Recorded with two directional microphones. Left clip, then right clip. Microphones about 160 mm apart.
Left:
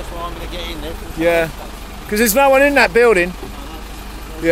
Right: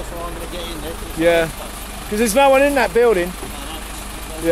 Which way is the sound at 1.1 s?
Centre (ahead or behind).